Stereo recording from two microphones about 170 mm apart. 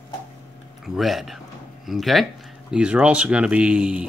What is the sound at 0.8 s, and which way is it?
Speech, centre (ahead or behind).